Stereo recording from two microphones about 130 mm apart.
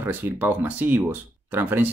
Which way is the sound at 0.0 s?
15° right (ahead or behind).